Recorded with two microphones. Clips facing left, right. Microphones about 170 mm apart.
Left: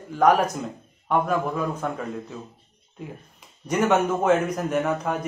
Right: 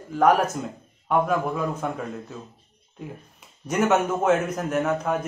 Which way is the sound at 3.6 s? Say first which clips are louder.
Even; 10° right (ahead or behind).